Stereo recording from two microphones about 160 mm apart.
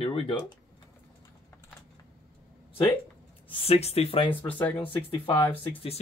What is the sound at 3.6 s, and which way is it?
Speech, 40° left (ahead or behind).